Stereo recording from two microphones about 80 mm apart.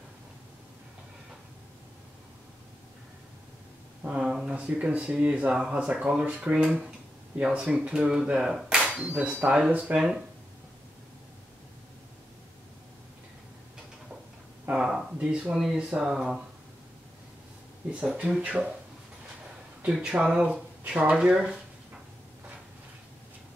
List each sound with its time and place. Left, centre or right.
4.0 s speech: centre
14.7 s speech: centre
17.9 s speech: centre
19.8 s speech: centre